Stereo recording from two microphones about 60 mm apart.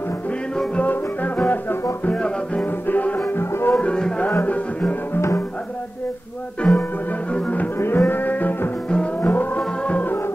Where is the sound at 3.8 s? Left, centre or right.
Centre.